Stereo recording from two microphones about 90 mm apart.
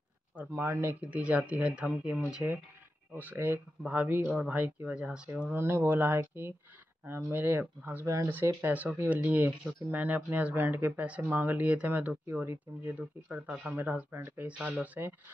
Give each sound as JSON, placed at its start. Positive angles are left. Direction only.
{"t": 0.5, "sound": "speech", "side_deg": -30}
{"t": 1.0, "sound": "speech", "side_deg": -15}
{"t": 5.5, "sound": "speech", "side_deg": -25}
{"t": 8.5, "sound": "speech", "side_deg": -20}